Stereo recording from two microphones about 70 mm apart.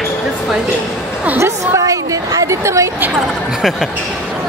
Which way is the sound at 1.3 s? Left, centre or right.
Right.